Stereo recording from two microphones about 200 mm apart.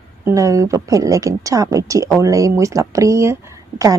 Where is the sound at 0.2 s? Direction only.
15° right (ahead or behind).